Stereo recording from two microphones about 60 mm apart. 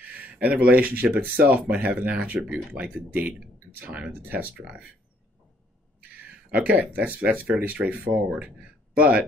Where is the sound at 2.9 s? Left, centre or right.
Right.